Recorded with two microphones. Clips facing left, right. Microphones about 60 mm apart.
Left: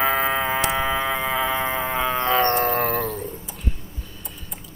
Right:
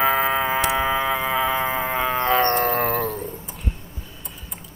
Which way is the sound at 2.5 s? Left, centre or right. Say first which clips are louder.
Even; right.